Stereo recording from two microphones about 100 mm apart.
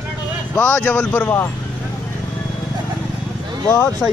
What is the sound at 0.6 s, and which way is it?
Speech, 15° left (ahead or behind).